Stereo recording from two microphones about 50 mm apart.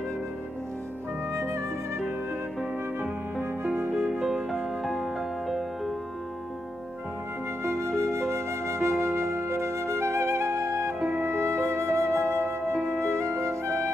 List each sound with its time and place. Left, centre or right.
1.3 s music: right
4.1 s music: centre
7.6 s flute: right
11.1 s music: right
12.4 s music: centre
13.2 s music: right